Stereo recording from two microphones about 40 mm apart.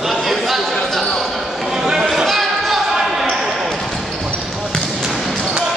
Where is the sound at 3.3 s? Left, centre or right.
Centre.